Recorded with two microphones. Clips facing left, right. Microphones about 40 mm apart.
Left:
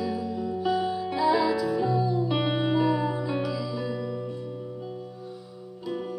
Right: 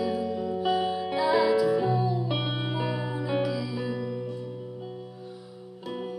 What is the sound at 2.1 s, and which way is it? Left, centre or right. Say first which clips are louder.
Music: left 4 dB; centre.